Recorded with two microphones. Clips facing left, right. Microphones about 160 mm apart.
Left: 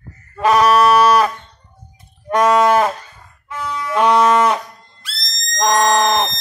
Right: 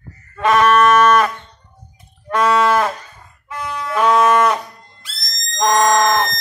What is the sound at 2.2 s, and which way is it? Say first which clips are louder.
Livestock: left 2 dB; 15° left (ahead or behind).